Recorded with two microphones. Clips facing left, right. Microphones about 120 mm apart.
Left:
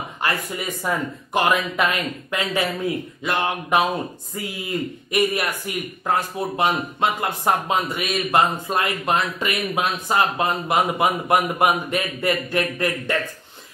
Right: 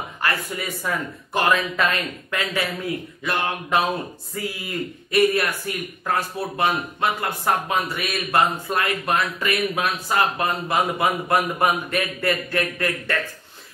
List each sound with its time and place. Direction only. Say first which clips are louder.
0.2 s speech: left 1 dB; 20° left (ahead or behind)